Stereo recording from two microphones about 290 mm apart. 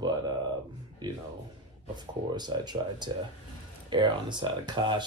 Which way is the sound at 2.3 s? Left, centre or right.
Centre.